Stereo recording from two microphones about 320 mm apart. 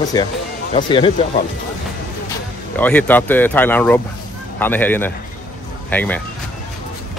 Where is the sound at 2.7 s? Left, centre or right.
Centre.